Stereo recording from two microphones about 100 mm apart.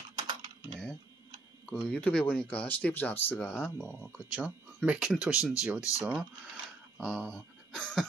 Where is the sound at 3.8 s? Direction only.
20° left (ahead or behind).